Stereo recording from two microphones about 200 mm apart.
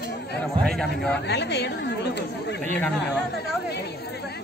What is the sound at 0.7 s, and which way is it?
Speech, 5° left (ahead or behind).